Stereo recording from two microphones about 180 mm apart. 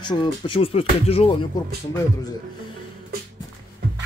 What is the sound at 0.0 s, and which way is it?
Speech, 25° left (ahead or behind).